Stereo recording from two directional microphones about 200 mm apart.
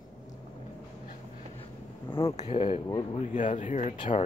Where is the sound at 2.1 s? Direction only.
30° left (ahead or behind).